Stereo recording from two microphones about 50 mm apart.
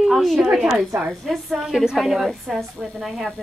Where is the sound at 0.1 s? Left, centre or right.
Centre.